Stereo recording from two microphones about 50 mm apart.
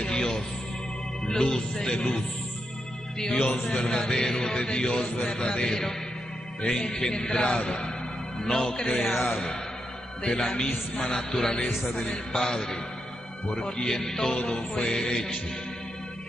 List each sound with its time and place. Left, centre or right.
0.0 s music: centre
3.2 s a man's voice: centre
3.5 s music: centre
9.1 s a man's voice: centre
10.6 s music: centre